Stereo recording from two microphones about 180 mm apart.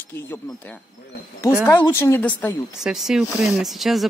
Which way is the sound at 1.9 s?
15° left (ahead or behind).